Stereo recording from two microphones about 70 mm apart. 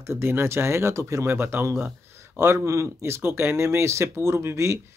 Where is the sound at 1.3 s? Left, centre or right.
Right.